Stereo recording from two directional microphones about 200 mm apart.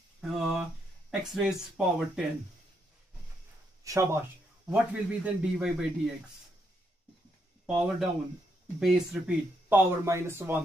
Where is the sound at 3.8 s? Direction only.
15° right (ahead or behind).